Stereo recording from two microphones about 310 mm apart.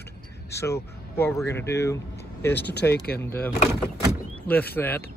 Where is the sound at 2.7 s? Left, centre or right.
Left.